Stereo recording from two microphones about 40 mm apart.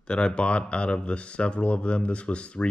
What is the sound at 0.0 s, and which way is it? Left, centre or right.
Speech, left.